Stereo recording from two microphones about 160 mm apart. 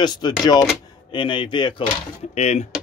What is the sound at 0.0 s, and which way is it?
A man's voice, 25° left (ahead or behind).